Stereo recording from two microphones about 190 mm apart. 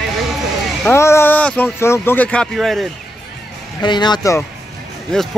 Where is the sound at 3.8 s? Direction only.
25° left (ahead or behind).